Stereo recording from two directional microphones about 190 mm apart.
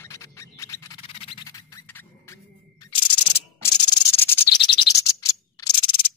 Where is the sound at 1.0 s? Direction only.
30° left (ahead or behind); by 2.3 s 15° left (ahead or behind).